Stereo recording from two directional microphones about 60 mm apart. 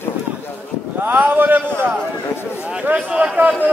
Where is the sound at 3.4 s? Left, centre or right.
Right.